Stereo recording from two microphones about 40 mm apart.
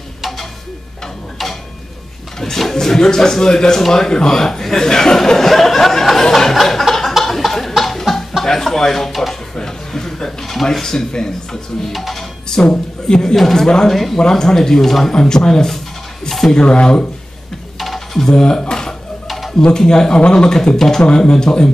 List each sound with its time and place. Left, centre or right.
1.4 s tick-tock: centre
2.6 s a sound: centre
9.6 s speech: centre
11.9 s speech: centre
12.4 s speech: centre
13.7 s speech: centre
17.7 s a sound: centre
18.2 s speech: centre
19.2 s music: centre
19.9 s speech: centre
20.5 s speech: centre
21.0 s speech: left